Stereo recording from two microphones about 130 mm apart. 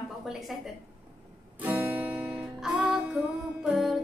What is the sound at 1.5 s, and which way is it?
Music, 15° right (ahead or behind).